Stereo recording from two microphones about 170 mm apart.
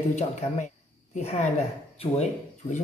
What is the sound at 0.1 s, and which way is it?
A woman's voice, 45° left (ahead or behind).